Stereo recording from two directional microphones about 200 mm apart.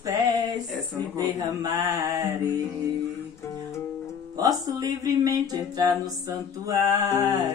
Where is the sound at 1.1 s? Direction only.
20° right (ahead or behind).